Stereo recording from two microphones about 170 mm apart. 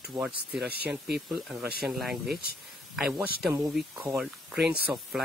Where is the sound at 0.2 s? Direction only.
Centre (ahead or behind).